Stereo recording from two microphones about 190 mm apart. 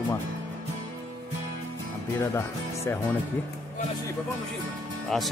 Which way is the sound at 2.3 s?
15° left (ahead or behind).